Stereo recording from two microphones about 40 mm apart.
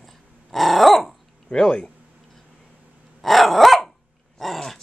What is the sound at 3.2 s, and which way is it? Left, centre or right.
Dog, centre.